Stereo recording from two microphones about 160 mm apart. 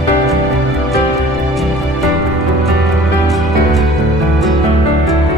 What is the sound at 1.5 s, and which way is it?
Music, centre (ahead or behind).